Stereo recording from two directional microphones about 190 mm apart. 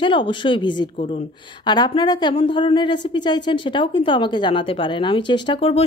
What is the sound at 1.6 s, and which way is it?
Speech, 25° left (ahead or behind).